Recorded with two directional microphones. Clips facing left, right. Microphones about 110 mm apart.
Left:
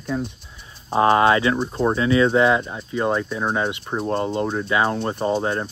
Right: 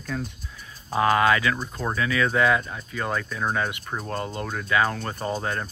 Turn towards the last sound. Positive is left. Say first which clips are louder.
# left 6 dB
turn(degrees=25)  # may be behind; listen again after turning